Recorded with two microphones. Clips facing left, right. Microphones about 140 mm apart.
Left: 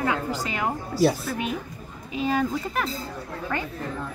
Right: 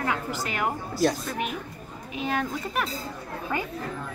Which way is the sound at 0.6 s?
5° left (ahead or behind).